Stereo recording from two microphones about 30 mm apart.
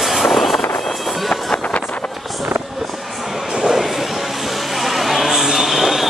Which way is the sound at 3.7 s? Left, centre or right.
Centre.